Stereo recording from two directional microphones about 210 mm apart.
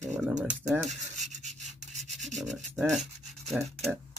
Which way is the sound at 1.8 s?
35° right (ahead or behind).